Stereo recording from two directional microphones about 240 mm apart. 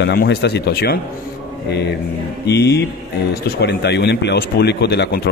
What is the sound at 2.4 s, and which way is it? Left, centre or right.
A man's voice, left.